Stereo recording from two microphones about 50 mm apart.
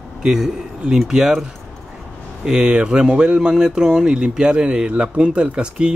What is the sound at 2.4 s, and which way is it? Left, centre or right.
Speech, centre.